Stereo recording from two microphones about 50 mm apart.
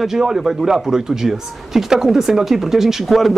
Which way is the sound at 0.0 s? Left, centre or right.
Centre.